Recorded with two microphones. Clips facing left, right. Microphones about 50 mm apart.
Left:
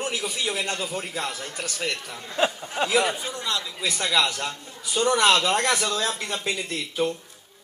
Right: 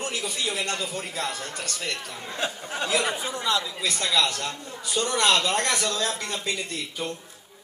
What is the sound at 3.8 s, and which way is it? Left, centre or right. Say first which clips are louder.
Speech: left 1 dB; centre.